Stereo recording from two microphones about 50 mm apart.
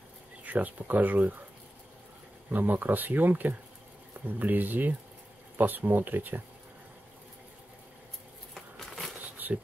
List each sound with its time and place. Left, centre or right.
0.4 s speech: right
2.5 s speech: right
8.5 s crumpling: centre
9.4 s a sound: right